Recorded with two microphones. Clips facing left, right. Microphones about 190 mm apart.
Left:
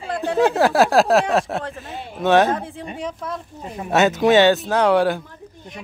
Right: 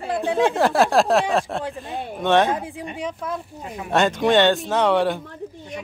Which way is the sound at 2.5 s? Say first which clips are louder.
Left 1 dB; 10° right (ahead or behind).